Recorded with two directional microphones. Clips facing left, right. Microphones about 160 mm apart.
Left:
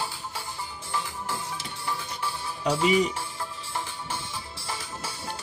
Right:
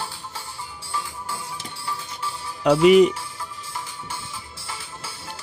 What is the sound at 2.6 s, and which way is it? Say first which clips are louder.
Speech: right 10 dB; 70° right (ahead or behind).